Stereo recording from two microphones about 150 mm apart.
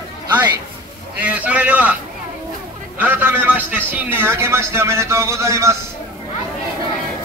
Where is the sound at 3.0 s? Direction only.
10° right (ahead or behind).